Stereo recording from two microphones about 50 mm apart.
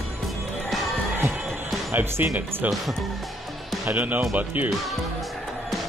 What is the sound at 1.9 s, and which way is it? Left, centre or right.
Speech, right.